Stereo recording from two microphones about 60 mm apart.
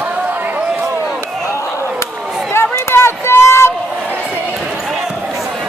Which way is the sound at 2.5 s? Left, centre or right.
Left.